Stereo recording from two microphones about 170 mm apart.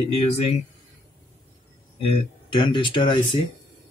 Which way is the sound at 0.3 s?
35° left (ahead or behind).